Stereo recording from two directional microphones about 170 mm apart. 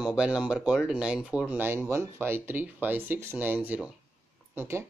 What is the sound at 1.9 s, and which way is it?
Speech, 15° right (ahead or behind).